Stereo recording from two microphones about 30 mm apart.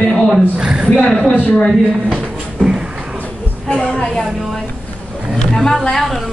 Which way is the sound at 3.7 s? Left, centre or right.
Left.